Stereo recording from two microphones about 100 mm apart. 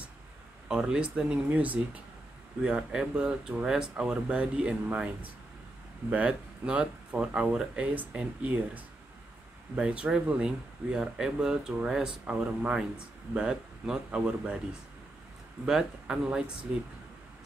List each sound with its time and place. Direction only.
0.7 s speech: 10° right (ahead or behind)